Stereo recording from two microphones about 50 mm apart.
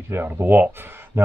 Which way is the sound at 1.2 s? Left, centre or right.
Right.